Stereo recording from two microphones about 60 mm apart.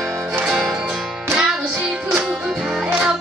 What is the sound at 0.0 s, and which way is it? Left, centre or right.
Music, right.